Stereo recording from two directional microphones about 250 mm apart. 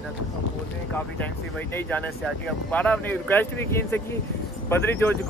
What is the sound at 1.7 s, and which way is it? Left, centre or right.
Speech, centre.